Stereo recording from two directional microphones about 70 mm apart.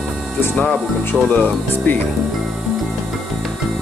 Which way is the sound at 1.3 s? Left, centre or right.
Left.